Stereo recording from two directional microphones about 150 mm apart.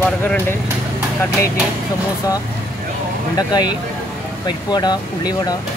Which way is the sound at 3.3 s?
25° left (ahead or behind).